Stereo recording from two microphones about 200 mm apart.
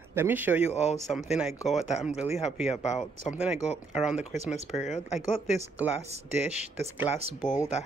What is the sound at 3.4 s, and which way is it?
Speech, 5° right (ahead or behind).